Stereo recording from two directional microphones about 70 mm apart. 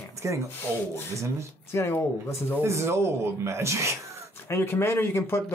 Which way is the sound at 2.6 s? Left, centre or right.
Right.